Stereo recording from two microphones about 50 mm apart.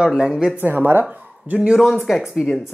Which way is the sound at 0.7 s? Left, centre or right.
Right.